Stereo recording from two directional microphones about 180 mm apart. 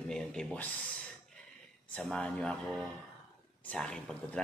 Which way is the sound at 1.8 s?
5° left (ahead or behind).